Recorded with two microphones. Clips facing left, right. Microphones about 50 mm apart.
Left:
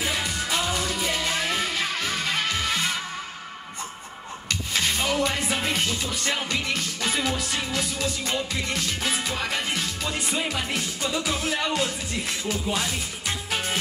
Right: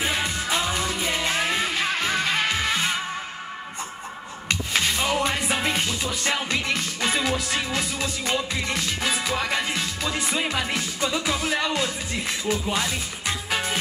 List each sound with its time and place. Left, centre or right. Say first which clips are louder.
0.0 s music: right 2 dB; right
4.5 s music: right 2 dB; right
12.4 s speech: right 3 dB; right